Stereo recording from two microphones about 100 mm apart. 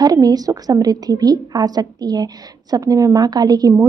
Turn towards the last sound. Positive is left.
turn(degrees=-40)  # may be behind; listen again after turning